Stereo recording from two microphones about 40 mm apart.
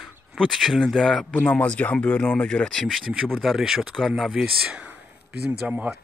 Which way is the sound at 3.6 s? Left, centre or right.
Centre.